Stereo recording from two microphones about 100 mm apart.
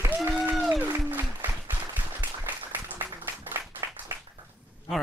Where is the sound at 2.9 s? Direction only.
20° right (ahead or behind).